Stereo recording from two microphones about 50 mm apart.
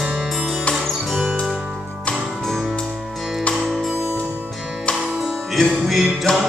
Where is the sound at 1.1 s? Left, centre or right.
Centre.